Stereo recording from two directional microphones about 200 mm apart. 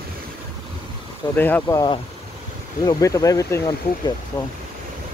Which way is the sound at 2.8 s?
15° left (ahead or behind).